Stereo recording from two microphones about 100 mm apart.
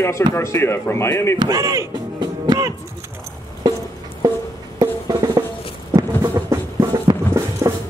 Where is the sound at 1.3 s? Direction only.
35° right (ahead or behind).